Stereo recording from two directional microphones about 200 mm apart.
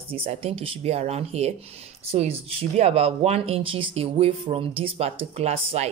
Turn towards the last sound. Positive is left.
turn(degrees=-30)  # may be behind; listen again after turning